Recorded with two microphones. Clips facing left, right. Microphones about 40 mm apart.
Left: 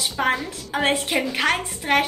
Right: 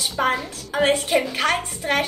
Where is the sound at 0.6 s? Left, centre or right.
Centre.